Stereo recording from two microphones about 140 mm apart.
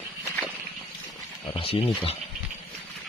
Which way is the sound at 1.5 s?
45° left (ahead or behind).